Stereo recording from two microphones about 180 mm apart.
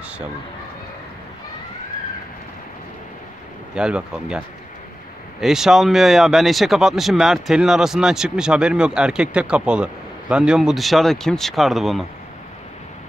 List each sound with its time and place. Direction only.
3.7 s speech: 5° right (ahead or behind)
5.4 s speech: centre (ahead or behind)